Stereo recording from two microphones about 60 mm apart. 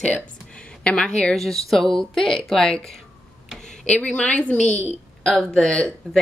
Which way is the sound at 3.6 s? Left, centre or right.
Centre.